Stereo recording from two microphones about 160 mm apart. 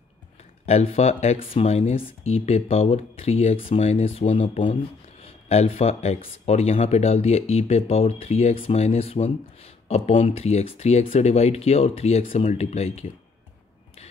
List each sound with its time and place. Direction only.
0.7 s speech: 40° left (ahead or behind)